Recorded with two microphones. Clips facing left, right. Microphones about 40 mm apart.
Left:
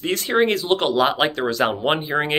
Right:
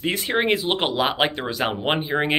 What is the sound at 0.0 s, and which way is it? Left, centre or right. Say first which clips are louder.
Speech: left 3 dB; right.